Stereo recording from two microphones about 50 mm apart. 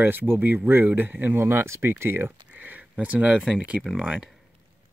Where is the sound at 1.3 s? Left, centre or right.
Right.